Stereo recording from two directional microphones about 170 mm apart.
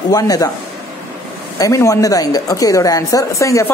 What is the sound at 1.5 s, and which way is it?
A woman's voice, 20° left (ahead or behind).